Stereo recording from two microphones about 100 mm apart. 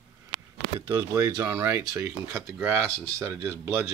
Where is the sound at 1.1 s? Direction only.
30° right (ahead or behind).